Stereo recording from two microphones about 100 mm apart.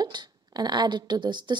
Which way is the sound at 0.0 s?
45° right (ahead or behind).